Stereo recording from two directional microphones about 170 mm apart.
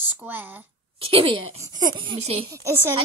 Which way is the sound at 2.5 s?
15° right (ahead or behind).